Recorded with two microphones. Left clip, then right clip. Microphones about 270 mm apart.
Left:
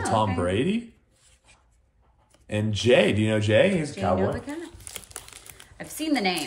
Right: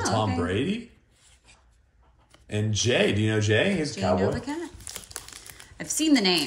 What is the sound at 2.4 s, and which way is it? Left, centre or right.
Speech, left.